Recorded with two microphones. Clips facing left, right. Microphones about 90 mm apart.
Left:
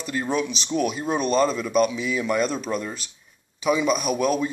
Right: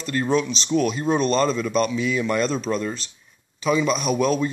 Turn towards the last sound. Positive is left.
turn(degrees=10)  # may be behind; listen again after turning